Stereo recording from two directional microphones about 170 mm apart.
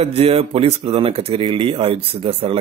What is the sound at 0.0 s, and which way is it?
Speech, 35° right (ahead or behind).